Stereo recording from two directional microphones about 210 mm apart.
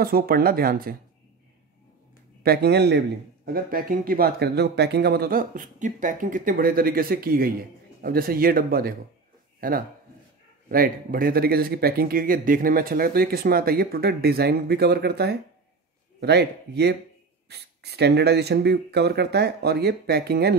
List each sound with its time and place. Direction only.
0.0 s a man's voice: 45° right (ahead or behind)
2.4 s a man's voice: 50° right (ahead or behind)